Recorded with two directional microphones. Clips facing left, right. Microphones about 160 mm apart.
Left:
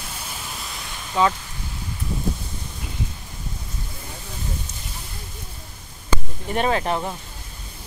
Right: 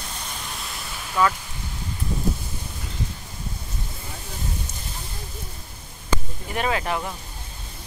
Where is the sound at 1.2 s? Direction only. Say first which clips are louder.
Left 1 dB; 25° left (ahead or behind).